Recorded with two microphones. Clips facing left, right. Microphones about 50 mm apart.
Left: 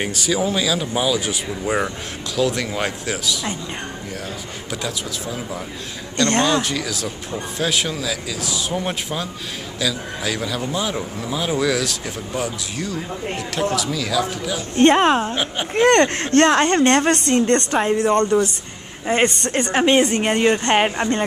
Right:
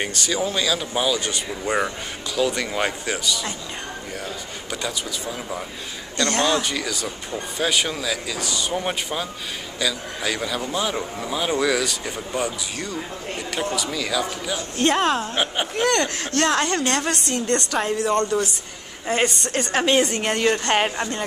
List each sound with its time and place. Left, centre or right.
0.0 s speech: centre
4.6 s speech: centre
6.2 s a woman's voice: left
6.6 s speech: centre
14.8 s a woman's voice: left
15.3 s speech: centre
15.7 s a woman's voice: left
19.5 s a woman's voice: left